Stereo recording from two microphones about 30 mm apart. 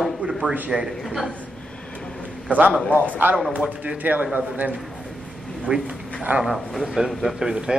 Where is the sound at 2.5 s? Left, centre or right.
Right.